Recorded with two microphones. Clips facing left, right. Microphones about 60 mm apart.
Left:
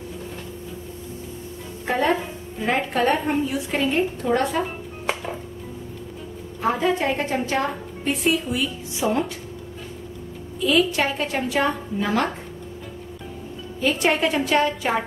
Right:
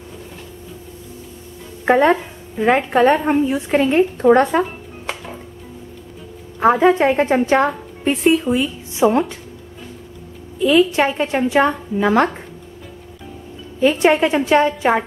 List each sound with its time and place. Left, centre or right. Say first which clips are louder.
2.6 s a woman's voice: right 8 dB; right
6.6 s a woman's voice: right 9 dB; right
10.6 s a woman's voice: right 6 dB; right
13.7 s a woman's voice: right 7 dB; right